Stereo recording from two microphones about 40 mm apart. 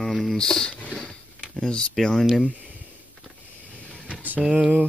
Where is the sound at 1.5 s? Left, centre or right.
Left.